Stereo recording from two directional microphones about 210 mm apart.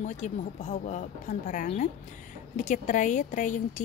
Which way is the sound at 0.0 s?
35° left (ahead or behind).